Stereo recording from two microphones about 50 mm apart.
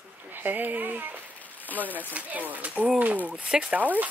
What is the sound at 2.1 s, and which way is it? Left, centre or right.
Speech, right.